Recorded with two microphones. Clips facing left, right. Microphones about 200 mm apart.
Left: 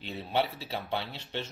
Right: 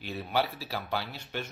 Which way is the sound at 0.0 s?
25° left (ahead or behind).